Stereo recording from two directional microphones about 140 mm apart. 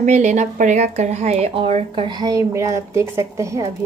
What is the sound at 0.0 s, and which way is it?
Speech, 55° right (ahead or behind).